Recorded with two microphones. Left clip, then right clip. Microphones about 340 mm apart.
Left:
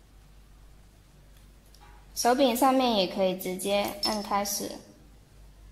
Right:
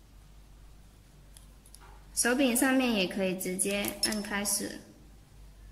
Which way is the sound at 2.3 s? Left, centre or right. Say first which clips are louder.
Left 4 dB; centre.